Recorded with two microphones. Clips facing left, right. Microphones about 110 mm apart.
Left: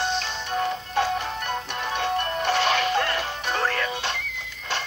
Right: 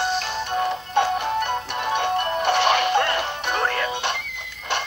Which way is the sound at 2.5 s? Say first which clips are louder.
Right 3 dB; 55° right (ahead or behind).